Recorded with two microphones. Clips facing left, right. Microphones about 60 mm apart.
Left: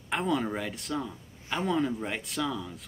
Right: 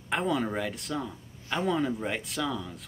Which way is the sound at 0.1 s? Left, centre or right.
Centre.